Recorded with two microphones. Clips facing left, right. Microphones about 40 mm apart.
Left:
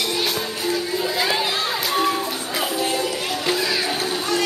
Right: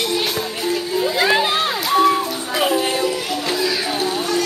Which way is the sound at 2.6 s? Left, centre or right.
Right.